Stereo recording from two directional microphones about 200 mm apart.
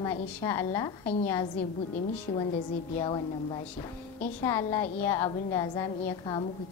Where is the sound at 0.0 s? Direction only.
15° left (ahead or behind).